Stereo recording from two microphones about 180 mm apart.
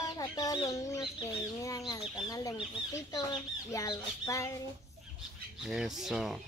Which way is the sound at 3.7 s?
15° left (ahead or behind).